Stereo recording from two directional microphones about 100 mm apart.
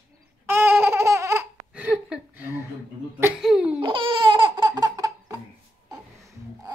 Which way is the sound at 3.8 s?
55° right (ahead or behind).